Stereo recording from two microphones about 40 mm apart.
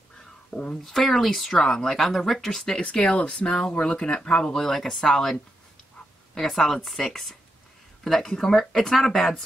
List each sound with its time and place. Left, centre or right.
0.8 s speech: centre
2.5 s speech: centre
3.2 s speech: left
4.5 s speech: centre